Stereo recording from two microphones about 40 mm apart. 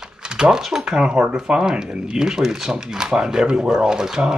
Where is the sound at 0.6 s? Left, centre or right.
Centre.